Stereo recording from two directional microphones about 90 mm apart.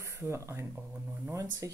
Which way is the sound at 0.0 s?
30° right (ahead or behind).